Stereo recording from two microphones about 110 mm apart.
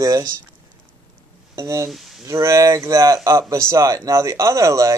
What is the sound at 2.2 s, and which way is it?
Speech, 25° right (ahead or behind).